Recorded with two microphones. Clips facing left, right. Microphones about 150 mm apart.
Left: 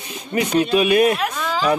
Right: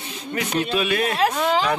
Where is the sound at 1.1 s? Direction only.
30° right (ahead or behind).